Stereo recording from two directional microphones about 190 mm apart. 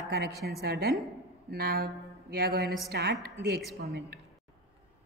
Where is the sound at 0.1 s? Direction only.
55° right (ahead or behind).